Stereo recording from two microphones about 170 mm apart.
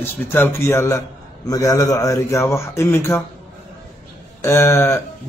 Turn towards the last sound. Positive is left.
turn(degrees=15)  # may be behind; listen again after turning